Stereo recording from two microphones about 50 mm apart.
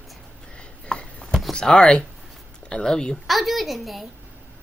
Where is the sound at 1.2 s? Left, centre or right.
Centre.